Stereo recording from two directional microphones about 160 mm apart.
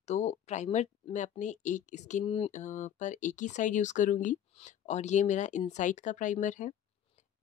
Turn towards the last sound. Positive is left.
turn(degrees=50)  # may be behind; listen again after turning